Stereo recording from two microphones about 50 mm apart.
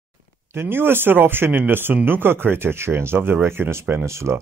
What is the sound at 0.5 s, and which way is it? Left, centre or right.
Speech, right.